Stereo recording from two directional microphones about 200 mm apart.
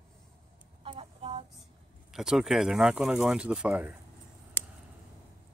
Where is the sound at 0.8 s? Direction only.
30° right (ahead or behind).